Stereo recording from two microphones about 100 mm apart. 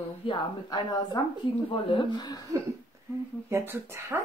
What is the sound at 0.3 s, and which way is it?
Speech, 40° left (ahead or behind).